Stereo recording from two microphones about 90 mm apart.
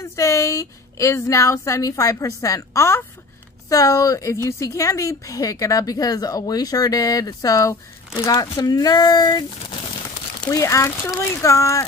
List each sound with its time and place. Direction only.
0.0 s a woman's voice: 35° left (ahead or behind)
3.6 s a woman's voice: 40° left (ahead or behind)
10.4 s a woman's voice: 40° left (ahead or behind)